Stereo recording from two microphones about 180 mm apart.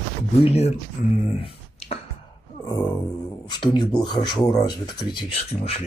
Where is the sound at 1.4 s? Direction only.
35° left (ahead or behind).